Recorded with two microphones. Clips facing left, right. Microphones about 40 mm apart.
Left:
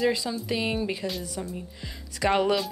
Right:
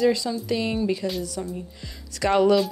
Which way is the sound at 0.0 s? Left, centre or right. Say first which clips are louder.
Right 4 dB; centre.